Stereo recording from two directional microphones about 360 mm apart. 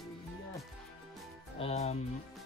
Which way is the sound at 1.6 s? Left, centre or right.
Centre.